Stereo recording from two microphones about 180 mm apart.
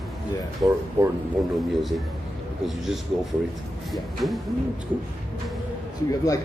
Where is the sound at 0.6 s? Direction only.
15° right (ahead or behind).